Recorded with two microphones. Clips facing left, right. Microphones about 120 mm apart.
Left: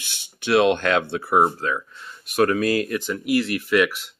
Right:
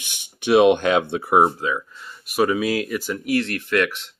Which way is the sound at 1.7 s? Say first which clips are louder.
Right 1 dB; 5° right (ahead or behind).